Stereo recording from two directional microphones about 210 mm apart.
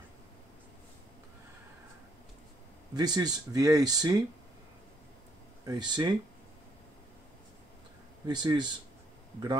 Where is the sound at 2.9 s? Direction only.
20° right (ahead or behind).